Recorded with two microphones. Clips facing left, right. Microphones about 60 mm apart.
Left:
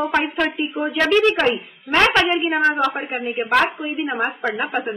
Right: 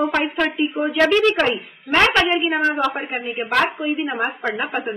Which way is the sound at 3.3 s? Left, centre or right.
Centre.